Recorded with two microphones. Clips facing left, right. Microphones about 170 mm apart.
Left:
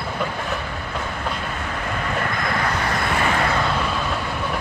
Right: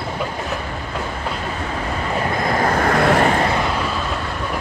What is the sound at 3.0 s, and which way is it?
Vehicle, 60° right (ahead or behind).